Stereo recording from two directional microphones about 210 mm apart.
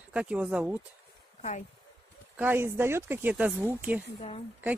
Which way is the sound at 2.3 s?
10° right (ahead or behind).